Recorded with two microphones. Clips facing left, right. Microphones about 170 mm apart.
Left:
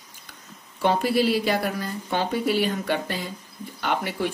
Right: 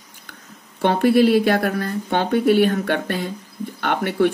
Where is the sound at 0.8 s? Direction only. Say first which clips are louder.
Right 6 dB; 60° right (ahead or behind).